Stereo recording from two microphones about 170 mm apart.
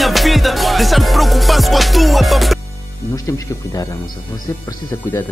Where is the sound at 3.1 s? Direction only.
20° left (ahead or behind).